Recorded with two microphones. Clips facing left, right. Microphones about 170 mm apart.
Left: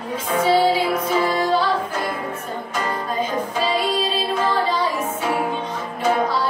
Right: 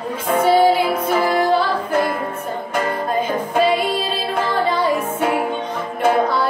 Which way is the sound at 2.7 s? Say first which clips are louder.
Right 4 dB; 55° right (ahead or behind).